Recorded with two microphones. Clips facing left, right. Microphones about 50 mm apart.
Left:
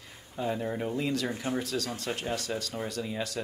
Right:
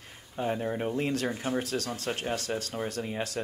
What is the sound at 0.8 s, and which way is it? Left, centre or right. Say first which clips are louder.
Speech: right 1 dB; right.